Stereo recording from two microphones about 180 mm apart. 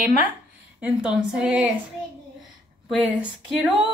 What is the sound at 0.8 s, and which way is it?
Speech, 5° right (ahead or behind).